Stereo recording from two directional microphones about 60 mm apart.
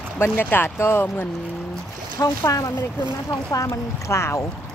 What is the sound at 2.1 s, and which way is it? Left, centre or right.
Speech, left.